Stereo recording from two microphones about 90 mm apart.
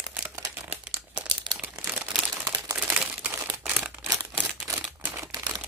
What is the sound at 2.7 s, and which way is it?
Crumpling, 25° right (ahead or behind).